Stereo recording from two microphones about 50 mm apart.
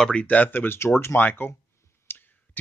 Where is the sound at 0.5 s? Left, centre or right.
Left.